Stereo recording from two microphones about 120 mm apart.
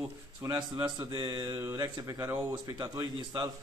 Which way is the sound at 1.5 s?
25° right (ahead or behind).